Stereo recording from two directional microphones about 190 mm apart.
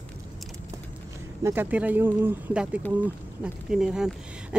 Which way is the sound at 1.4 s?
10° right (ahead or behind).